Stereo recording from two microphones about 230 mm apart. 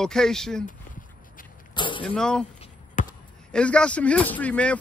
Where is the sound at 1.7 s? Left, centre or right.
Left.